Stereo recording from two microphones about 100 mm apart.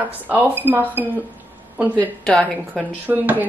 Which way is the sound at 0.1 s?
15° right (ahead or behind).